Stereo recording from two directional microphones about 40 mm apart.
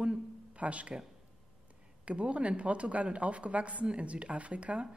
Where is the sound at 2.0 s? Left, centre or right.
Right.